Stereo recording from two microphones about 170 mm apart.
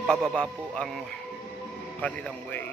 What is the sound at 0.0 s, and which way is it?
Speech, 5° left (ahead or behind).